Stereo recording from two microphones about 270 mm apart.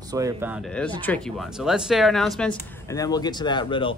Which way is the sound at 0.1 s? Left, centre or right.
Centre.